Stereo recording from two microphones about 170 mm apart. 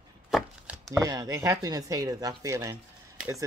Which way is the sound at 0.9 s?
20° right (ahead or behind).